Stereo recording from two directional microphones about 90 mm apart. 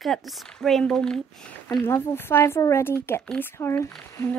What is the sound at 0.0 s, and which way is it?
Speech, centre (ahead or behind).